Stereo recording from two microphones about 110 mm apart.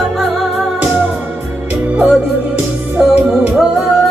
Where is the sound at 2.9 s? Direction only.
15° right (ahead or behind).